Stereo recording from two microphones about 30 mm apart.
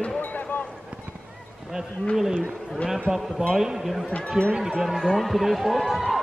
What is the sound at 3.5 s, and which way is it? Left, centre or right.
A man's voice, centre.